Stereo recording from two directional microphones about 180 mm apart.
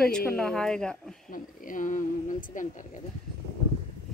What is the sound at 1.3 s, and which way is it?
A woman's voice, 50° left (ahead or behind).